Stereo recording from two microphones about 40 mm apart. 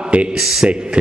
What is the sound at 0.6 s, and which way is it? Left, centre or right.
Speech, right.